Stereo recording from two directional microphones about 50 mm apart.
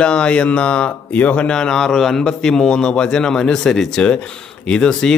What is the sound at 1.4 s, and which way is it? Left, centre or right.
A man's voice, centre.